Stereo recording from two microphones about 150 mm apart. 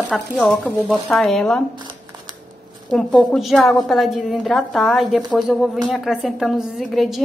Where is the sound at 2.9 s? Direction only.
Centre (ahead or behind).